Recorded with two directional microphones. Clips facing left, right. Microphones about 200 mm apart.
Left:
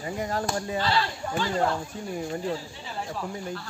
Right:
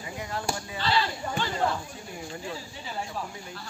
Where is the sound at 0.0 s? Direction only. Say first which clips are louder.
Left 6 dB; 40° left (ahead or behind).